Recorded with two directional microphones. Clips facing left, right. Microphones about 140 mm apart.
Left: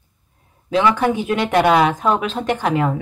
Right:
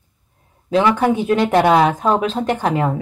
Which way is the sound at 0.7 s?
40° right (ahead or behind).